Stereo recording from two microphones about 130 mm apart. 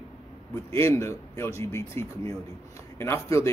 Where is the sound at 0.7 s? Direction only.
20° left (ahead or behind).